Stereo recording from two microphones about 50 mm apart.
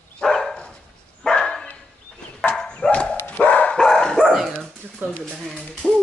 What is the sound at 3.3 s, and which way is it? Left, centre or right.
Dog, left.